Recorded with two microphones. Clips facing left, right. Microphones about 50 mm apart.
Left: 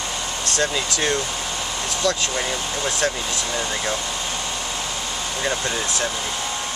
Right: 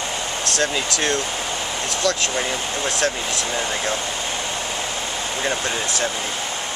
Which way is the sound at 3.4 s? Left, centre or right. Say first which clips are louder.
Right 1 dB; centre.